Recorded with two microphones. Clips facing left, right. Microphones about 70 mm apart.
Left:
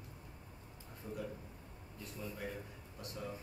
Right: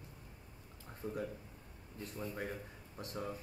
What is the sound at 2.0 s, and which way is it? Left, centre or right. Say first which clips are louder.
A man's voice: right 3 dB; right.